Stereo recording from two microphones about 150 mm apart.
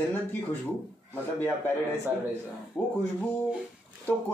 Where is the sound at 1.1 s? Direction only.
15° left (ahead or behind).